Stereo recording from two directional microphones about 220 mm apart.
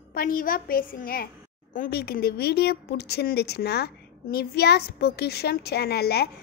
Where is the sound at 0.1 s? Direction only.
40° left (ahead or behind).